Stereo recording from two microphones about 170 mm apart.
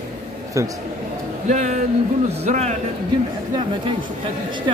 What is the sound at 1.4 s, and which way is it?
Speech, 45° right (ahead or behind).